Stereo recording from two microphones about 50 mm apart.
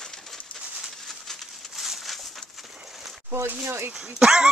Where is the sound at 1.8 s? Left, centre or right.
Centre.